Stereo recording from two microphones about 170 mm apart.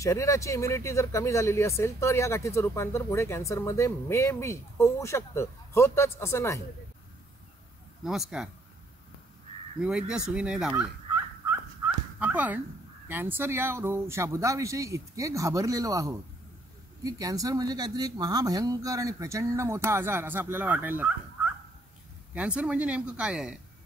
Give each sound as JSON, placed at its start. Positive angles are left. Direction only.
{"t": 0.0, "sound": "speech", "side_deg": 20}
{"t": 8.0, "sound": "speech", "side_deg": -5}
{"t": 9.8, "sound": "speech", "side_deg": -5}
{"t": 12.2, "sound": "speech", "side_deg": -10}
{"t": 22.3, "sound": "speech", "side_deg": -5}